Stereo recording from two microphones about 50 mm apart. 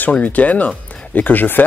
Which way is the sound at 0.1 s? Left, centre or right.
Left.